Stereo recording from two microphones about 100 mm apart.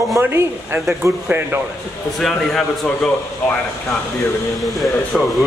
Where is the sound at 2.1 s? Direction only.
Centre (ahead or behind).